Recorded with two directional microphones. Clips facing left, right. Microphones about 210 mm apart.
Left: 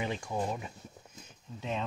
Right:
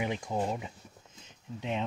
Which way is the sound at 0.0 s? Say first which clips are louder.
Right 2 dB; 20° right (ahead or behind).